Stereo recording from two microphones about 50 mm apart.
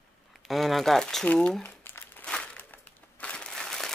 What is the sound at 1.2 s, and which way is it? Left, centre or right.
Speech, left.